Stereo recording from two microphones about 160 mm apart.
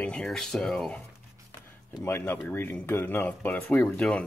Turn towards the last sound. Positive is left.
turn(degrees=5)  # may be behind; listen again after turning